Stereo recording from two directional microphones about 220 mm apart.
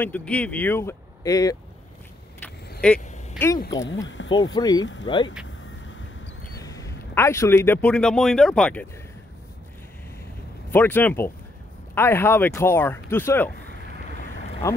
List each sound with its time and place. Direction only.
0.0 s speech: 5° left (ahead or behind)
2.8 s speech: 5° left (ahead or behind)
4.2 s a sound: 60° left (ahead or behind)
4.6 s speech: 20° left (ahead or behind)
6.6 s a man's voice: 15° left (ahead or behind)
10.7 s speech: 10° left (ahead or behind)
14.6 s speech: 15° left (ahead or behind)